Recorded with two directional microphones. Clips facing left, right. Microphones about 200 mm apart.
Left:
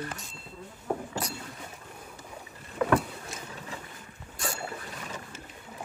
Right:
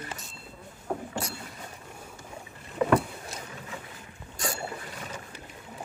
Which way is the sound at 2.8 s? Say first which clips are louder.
Right 2 dB; 25° right (ahead or behind).